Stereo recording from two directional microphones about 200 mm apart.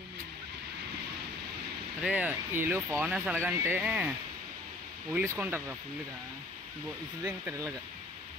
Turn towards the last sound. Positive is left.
turn(degrees=-15)  # may be behind; listen again after turning